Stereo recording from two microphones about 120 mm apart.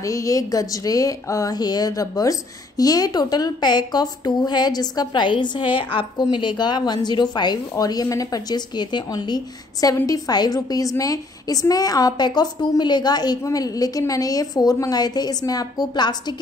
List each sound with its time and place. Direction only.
0.0 s a woman's voice: 30° left (ahead or behind)